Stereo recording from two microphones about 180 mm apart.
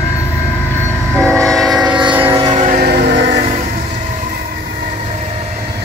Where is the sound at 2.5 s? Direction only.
45° right (ahead or behind).